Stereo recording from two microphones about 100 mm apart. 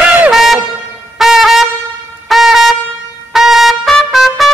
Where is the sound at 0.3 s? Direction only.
Centre (ahead or behind).